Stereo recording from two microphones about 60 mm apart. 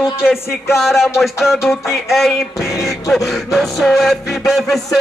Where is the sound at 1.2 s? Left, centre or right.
Centre.